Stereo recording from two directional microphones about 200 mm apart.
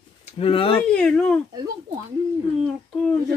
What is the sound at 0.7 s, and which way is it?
Speech, 5° left (ahead or behind).